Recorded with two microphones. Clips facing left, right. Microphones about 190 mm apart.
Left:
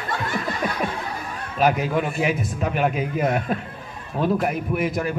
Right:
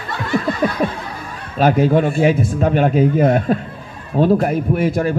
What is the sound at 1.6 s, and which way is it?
A man's voice, 30° right (ahead or behind).